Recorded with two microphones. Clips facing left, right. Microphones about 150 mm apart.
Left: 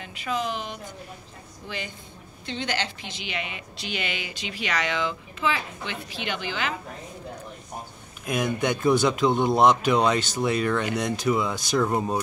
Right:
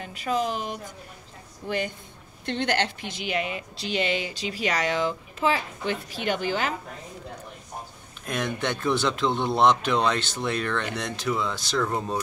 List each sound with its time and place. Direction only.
0.0 s a woman's voice: 40° right (ahead or behind)
8.3 s speech: 10° left (ahead or behind)